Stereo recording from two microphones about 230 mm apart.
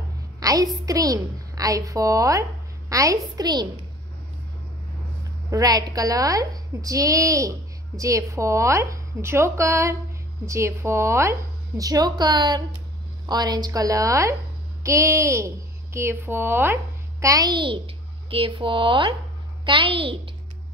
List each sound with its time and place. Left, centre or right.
0.4 s a sound: centre
0.8 s a woman's voice: centre
5.5 s a woman's voice: centre